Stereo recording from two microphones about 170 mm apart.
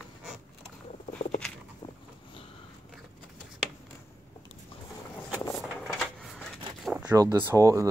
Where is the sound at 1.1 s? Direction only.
50° left (ahead or behind).